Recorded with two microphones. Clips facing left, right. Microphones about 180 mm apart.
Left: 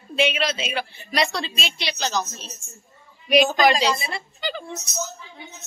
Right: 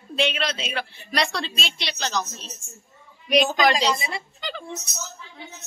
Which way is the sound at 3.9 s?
15° right (ahead or behind).